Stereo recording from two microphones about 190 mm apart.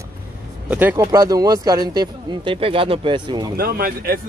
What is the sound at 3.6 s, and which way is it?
Speech, 50° right (ahead or behind).